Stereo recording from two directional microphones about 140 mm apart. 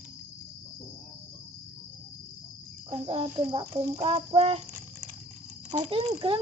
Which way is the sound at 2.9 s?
40° right (ahead or behind).